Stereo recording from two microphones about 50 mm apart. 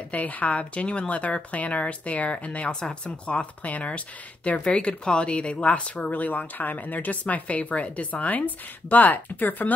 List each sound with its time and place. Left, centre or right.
0.1 s speech: left